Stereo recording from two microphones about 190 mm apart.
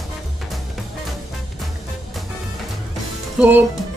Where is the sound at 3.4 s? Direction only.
10° right (ahead or behind).